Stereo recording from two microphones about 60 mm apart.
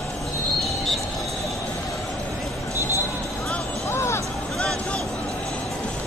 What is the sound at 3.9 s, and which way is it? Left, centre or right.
Vehicle, left.